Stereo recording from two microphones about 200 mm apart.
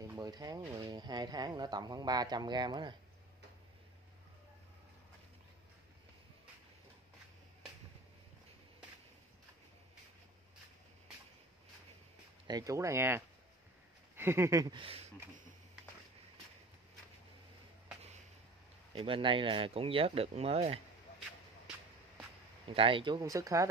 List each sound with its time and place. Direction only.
0.0 s speech: 15° right (ahead or behind)
12.4 s speech: 20° right (ahead or behind)
14.1 s a sound: 10° right (ahead or behind); by 15.1 s 30° right (ahead or behind)
18.9 s speech: 25° right (ahead or behind)
22.7 s speech: 25° right (ahead or behind)